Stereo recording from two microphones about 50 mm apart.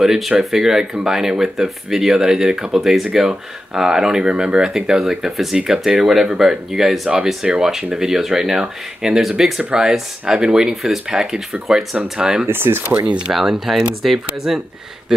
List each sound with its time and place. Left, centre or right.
0.0 s speech: centre
7.4 s speech: centre
12.4 s speech: right
13.3 s speech: centre